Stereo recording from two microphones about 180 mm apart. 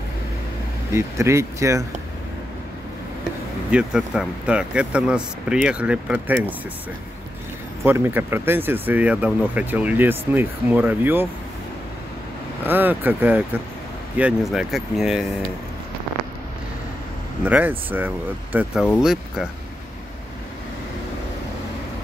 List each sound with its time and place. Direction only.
0.9 s speech: 15° right (ahead or behind)
3.7 s speech: 5° right (ahead or behind)
7.8 s speech: 10° right (ahead or behind)
12.6 s speech: 10° right (ahead or behind)
17.5 s speech: 10° right (ahead or behind)